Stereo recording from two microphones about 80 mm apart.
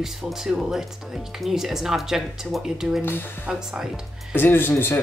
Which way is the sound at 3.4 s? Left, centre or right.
Centre.